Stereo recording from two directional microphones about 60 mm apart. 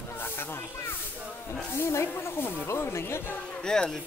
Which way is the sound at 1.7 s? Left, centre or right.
Left.